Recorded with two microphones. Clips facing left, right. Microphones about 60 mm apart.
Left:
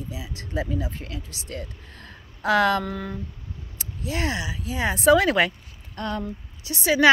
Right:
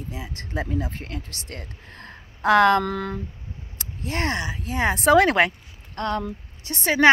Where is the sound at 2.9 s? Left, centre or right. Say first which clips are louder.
Right 4 dB; right.